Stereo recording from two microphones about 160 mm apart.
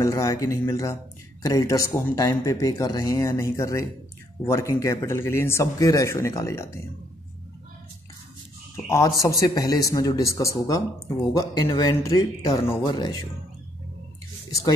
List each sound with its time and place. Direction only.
0.0 s a man's voice: 20° left (ahead or behind)
8.7 s speech: 20° left (ahead or behind)